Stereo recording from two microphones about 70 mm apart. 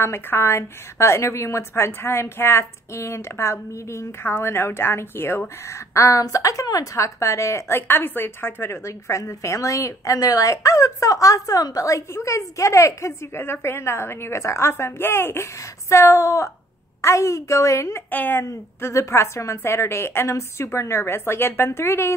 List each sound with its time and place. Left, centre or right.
0.0 s a woman's voice: left
5.7 s a woman's voice: left
13.4 s a woman's voice: left
18.1 s speech: left
18.4 s a woman's voice: left